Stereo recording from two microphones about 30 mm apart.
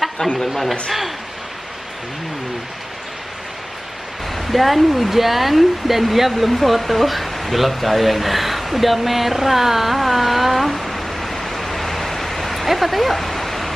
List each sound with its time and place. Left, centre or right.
0.2 s speech: left
4.4 s speech: centre
13.3 s bow-wow: centre